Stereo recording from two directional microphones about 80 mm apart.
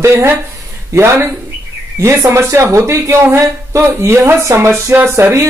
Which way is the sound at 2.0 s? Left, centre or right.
Right.